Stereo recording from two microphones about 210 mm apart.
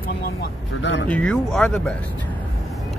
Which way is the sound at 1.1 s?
5° left (ahead or behind).